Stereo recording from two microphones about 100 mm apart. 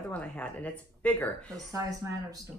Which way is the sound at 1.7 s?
35° right (ahead or behind).